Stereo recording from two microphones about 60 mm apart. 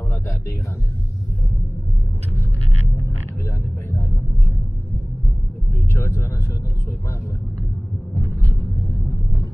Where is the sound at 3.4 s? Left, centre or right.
Left.